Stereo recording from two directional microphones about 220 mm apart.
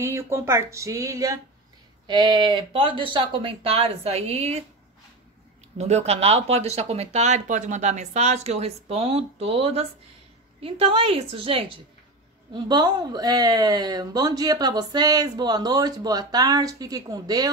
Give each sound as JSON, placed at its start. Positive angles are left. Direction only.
{"t": 0.0, "sound": "speech", "side_deg": -10}
{"t": 5.8, "sound": "speech", "side_deg": -30}